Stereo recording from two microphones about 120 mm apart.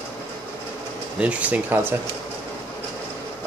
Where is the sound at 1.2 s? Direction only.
10° right (ahead or behind).